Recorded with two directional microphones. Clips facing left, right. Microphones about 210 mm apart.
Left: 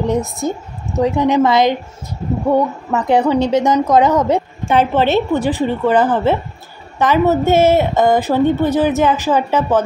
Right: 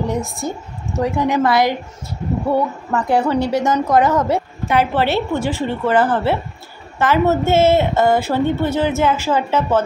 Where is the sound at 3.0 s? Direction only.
20° left (ahead or behind).